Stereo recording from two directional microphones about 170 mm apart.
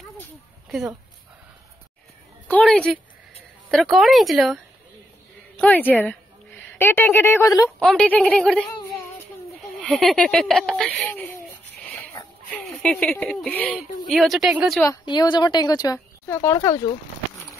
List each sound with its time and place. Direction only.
0.7 s speech: 5° right (ahead or behind)
2.4 s a woman's voice: 10° left (ahead or behind)
5.6 s speech: 10° left (ahead or behind)
7.8 s a woman's voice: 5° left (ahead or behind)
9.6 s a sound: centre (ahead or behind)
12.5 s a woman's voice: 5° left (ahead or behind)
14.9 s speech: 25° left (ahead or behind)